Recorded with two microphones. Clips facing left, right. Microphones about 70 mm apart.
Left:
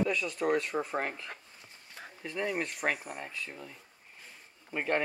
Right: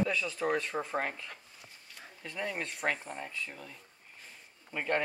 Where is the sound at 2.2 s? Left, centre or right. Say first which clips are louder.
Left 4 dB; centre.